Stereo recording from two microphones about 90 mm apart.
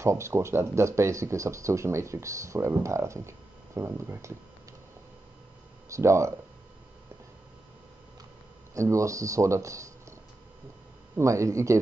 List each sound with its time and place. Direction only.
0.0 s speech: 30° right (ahead or behind)
5.9 s speech: 35° right (ahead or behind)
8.7 s speech: 35° right (ahead or behind)
11.1 s speech: 35° right (ahead or behind)